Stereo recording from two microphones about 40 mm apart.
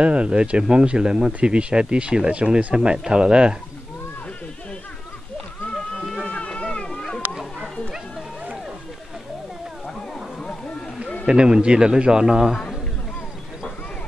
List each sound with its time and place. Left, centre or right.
0.0 s speech: right
6.2 s cat: left
11.2 s speech: right